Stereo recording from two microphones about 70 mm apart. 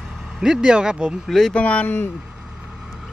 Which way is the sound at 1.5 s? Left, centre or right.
Centre.